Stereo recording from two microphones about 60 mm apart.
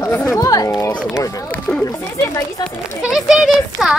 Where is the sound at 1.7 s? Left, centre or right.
Left.